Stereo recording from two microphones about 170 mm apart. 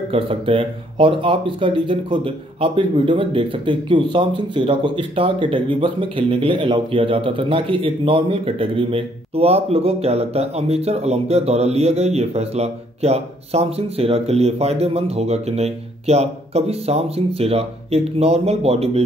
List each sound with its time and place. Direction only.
0.1 s speech: 30° right (ahead or behind)